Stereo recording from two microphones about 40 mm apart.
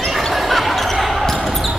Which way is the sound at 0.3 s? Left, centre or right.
Centre.